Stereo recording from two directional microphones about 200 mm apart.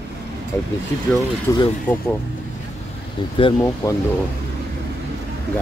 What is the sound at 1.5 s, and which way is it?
Speech, 10° left (ahead or behind).